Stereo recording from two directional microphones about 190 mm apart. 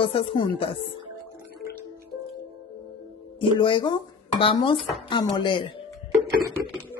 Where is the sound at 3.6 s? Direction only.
25° left (ahead or behind).